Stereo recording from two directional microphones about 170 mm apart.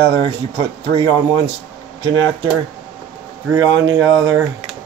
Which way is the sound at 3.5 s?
20° right (ahead or behind).